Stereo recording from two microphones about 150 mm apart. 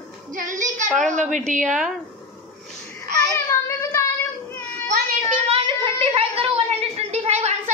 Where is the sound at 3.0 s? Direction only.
20° left (ahead or behind).